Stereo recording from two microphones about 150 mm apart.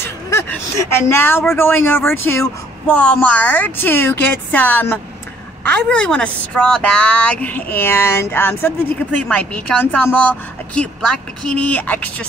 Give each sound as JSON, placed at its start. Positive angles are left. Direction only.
{"t": 0.0, "sound": "a woman's voice", "side_deg": 15}
{"t": 9.8, "sound": "a woman's voice", "side_deg": 10}